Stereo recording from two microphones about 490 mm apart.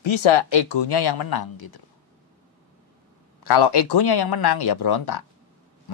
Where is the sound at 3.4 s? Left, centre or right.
Left.